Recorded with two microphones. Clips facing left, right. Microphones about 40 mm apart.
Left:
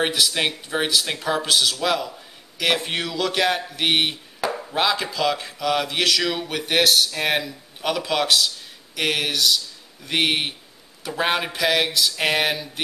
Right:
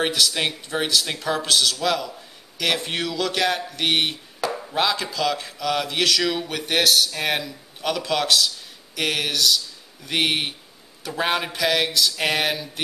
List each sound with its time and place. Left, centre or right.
0.0 s speech: centre